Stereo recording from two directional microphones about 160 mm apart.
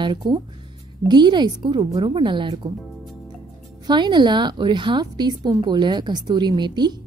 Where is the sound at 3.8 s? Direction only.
30° right (ahead or behind).